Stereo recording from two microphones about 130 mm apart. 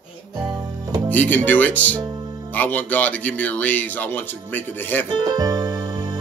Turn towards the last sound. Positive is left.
turn(degrees=-30)  # may be behind; listen again after turning